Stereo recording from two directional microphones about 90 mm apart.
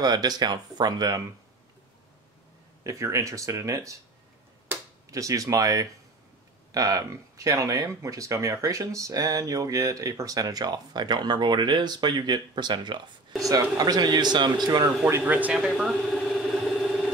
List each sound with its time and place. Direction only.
0.0 s speech: 50° right (ahead or behind)
2.8 s speech: 35° right (ahead or behind)
5.1 s speech: 40° right (ahead or behind); by 13.0 s 60° right (ahead or behind)
13.4 s speech: 40° right (ahead or behind)
15.0 s speech: 25° right (ahead or behind)
15.5 s vehicle: 5° right (ahead or behind)